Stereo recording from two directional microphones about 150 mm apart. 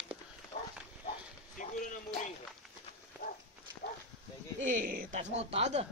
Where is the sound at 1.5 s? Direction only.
60° left (ahead or behind).